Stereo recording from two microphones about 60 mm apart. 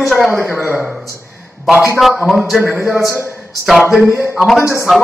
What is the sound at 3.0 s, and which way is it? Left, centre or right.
Speech, left.